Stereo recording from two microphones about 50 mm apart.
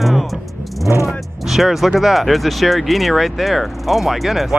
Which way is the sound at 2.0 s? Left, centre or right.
Centre.